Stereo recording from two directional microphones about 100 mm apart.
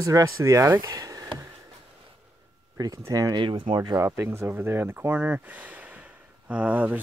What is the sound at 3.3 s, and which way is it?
Speech, 55° right (ahead or behind).